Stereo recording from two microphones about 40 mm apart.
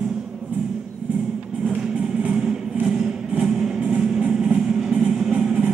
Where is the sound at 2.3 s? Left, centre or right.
Right.